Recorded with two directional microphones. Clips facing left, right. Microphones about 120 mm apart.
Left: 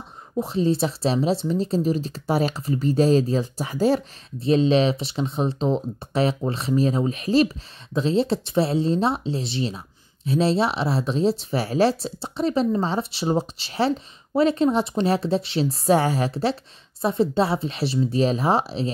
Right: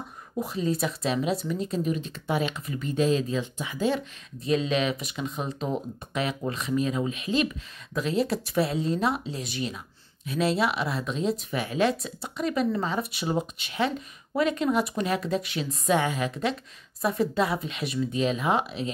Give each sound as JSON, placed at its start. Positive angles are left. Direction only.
{"t": 0.4, "sound": "speech", "side_deg": 30}